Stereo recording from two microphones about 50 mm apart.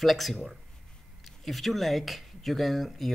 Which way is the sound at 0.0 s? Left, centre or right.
Centre.